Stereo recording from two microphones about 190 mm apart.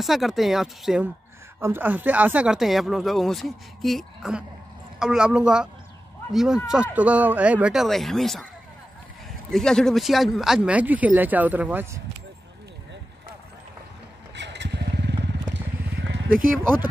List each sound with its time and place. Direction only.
0.0 s speech: centre (ahead or behind)
9.5 s speech: 5° left (ahead or behind)
14.3 s motorcycle: 65° right (ahead or behind)